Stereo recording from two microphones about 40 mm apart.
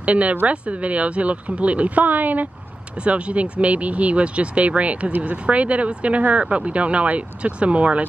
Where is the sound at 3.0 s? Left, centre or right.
Right.